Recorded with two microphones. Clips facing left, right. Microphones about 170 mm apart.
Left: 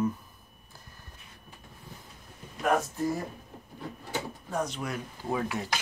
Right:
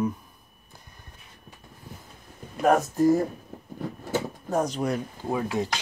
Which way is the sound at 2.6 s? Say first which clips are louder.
Right 7 dB; 40° right (ahead or behind).